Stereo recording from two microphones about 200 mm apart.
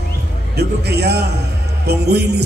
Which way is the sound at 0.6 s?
55° right (ahead or behind).